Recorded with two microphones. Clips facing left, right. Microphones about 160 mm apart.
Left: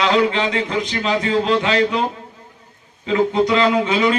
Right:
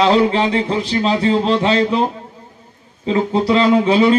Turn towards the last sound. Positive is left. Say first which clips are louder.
# right 4 dB
turn(degrees=-35)  # may be behind; listen again after turning